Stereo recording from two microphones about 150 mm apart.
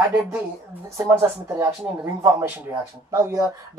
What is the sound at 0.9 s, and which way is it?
Speech, 20° right (ahead or behind).